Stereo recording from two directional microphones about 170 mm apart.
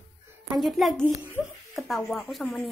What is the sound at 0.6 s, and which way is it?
A child's voice, centre (ahead or behind).